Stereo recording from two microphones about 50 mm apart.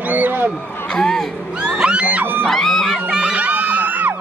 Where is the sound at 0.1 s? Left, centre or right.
Right.